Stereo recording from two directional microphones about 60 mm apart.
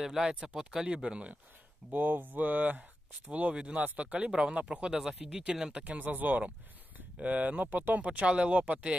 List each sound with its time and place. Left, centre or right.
0.0 s speech: centre
1.9 s speech: right